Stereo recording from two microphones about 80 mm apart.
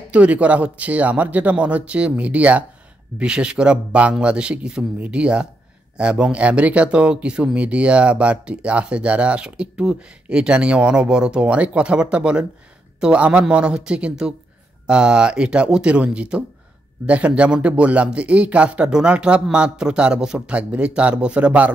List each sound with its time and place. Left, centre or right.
0.1 s speech: centre